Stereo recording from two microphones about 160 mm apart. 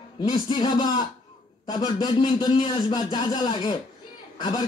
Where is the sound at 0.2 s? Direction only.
30° left (ahead or behind).